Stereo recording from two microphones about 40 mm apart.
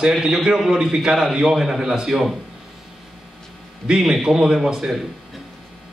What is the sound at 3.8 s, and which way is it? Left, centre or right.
A man's voice, centre.